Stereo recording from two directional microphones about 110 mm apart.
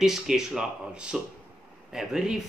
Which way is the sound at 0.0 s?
5° right (ahead or behind).